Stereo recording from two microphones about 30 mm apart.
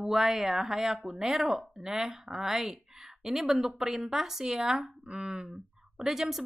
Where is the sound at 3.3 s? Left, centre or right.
Centre.